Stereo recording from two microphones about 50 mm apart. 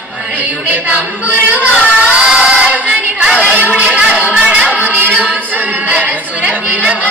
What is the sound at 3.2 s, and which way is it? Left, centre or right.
A woman's voice, right.